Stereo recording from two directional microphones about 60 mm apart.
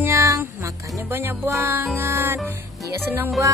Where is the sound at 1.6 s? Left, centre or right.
Right.